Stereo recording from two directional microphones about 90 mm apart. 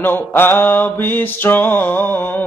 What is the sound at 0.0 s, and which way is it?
Mantra, 25° left (ahead or behind).